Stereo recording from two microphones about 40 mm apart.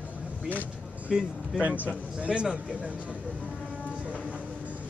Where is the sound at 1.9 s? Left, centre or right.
Right.